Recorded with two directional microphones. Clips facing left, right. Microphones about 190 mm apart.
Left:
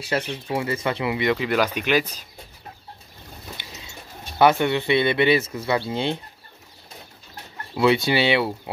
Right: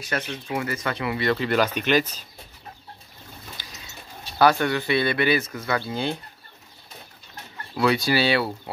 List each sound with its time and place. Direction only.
0.1 s speech: 25° left (ahead or behind)
3.5 s a sound: 25° left (ahead or behind)
4.4 s speech: 20° left (ahead or behind)
7.7 s speech: 25° left (ahead or behind)